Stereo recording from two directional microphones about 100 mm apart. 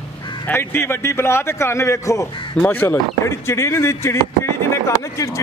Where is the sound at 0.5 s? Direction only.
25° left (ahead or behind).